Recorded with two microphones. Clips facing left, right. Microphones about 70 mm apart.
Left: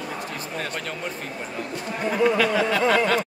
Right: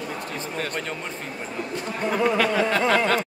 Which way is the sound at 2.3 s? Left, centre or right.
Right.